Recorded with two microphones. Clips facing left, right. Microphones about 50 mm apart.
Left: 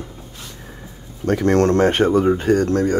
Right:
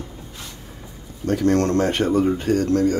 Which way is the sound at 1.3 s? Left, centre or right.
Left.